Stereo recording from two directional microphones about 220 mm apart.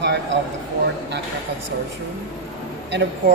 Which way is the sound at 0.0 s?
50° right (ahead or behind).